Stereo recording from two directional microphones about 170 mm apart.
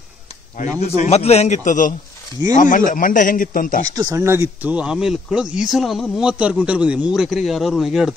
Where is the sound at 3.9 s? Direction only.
15° right (ahead or behind); by 8.1 s centre (ahead or behind).